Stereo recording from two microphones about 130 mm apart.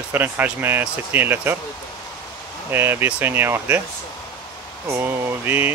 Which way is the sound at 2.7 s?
15° right (ahead or behind).